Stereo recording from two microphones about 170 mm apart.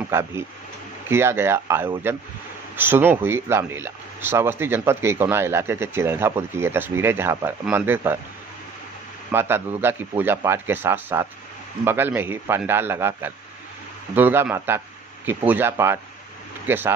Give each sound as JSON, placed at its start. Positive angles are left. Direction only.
{"t": 0.1, "sound": "speech", "side_deg": -15}
{"t": 9.3, "sound": "speech", "side_deg": -15}